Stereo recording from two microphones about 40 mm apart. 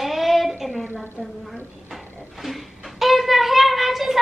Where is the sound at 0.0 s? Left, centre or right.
Centre.